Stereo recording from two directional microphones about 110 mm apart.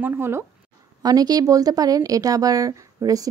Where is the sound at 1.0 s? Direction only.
35° right (ahead or behind).